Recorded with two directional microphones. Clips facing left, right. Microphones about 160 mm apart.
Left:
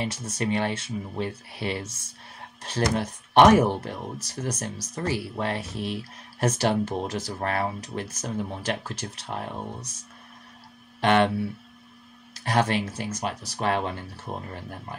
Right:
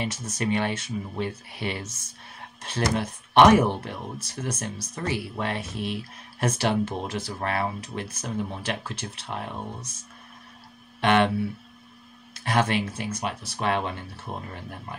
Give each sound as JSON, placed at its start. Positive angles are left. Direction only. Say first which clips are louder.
{"t": 0.0, "sound": "speech", "louder": "even", "side_deg": 30}
{"t": 11.0, "sound": "speech", "louder": "even", "side_deg": 40}
{"t": 12.4, "sound": "speech", "louder": "even", "side_deg": 40}